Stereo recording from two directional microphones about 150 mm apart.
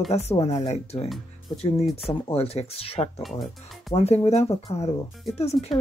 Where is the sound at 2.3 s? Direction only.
40° left (ahead or behind).